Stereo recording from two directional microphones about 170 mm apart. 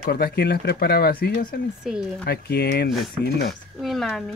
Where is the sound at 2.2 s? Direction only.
70° left (ahead or behind).